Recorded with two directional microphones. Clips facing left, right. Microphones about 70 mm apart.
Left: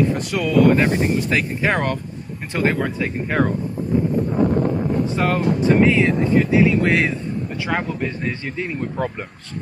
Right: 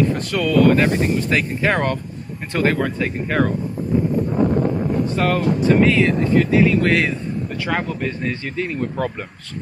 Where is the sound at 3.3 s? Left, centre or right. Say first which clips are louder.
Even; left.